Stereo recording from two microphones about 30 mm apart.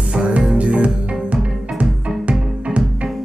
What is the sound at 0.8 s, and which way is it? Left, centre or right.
Music, right.